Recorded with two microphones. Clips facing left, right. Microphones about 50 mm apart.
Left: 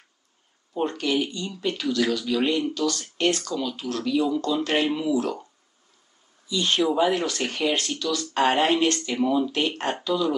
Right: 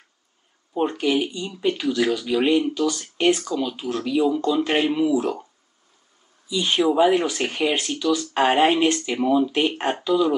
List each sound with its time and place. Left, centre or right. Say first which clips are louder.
0.7 s speech: right 3 dB; centre
6.5 s speech: right 3 dB; centre